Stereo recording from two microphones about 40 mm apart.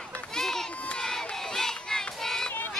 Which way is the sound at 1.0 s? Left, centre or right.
Centre.